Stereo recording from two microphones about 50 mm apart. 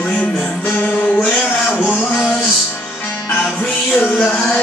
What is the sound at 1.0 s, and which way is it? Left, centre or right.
Mantra, left.